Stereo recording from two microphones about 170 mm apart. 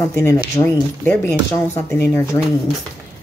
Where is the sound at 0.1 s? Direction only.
15° left (ahead or behind).